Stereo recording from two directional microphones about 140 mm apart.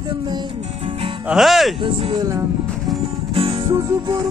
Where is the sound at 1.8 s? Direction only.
35° right (ahead or behind).